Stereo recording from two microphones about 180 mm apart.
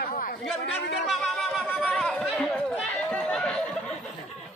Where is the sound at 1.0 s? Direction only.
Centre (ahead or behind).